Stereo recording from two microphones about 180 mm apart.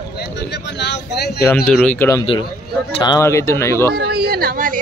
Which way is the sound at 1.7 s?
5° left (ahead or behind).